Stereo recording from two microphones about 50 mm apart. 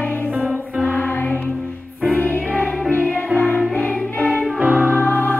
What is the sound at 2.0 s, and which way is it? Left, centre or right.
Music, right.